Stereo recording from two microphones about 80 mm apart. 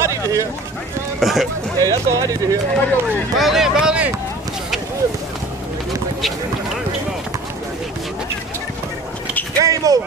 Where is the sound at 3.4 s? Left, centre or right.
Centre.